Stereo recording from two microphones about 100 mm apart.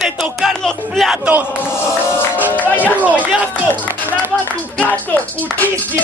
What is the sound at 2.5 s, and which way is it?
Crowd, 15° left (ahead or behind).